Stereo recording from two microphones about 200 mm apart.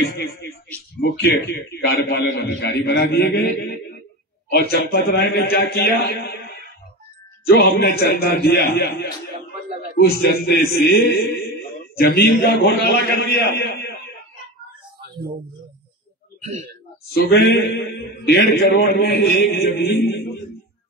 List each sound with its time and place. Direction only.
0.0 s a man's voice: 55° left (ahead or behind)
1.9 s a man's voice: 55° left (ahead or behind)
7.4 s a man's voice: 50° left (ahead or behind)
15.0 s a sound: 50° right (ahead or behind)
17.1 s a man's voice: 50° left (ahead or behind)